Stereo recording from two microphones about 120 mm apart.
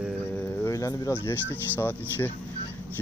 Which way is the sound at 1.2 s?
15° left (ahead or behind).